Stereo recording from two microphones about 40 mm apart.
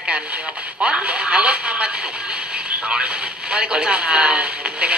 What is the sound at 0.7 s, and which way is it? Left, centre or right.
Speech, right.